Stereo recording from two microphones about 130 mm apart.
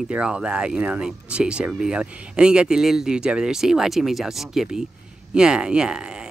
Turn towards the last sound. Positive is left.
turn(degrees=-5)  # may be behind; listen again after turning